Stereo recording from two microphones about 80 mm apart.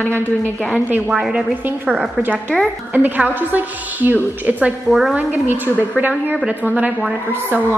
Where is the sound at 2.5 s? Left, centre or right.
Centre.